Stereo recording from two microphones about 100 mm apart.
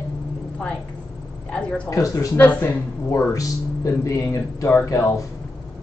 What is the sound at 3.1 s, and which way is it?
Speech, 35° left (ahead or behind).